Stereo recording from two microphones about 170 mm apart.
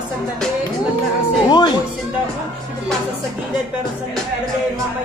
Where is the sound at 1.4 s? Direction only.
25° left (ahead or behind).